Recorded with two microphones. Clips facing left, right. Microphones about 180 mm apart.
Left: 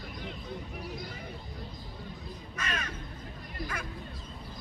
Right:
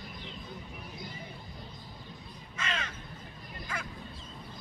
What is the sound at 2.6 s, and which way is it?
Crow, 25° right (ahead or behind).